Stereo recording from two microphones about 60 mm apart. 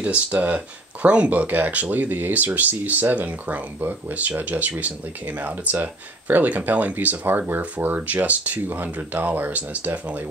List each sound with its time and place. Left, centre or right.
0.0 s speech: right